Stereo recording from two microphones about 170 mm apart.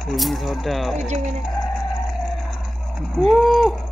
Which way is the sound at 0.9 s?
45° right (ahead or behind).